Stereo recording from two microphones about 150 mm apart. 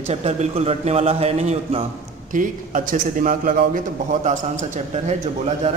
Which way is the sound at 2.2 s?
60° right (ahead or behind).